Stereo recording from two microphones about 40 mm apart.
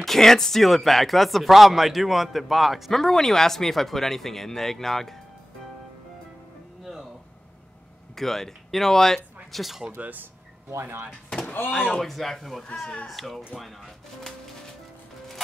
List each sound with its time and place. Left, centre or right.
0.0 s a man's voice: centre
6.8 s music: centre
8.2 s speech: centre
9.9 s speech: right
10.8 s speech: right
11.4 s door: left
12.0 s a man's voice: centre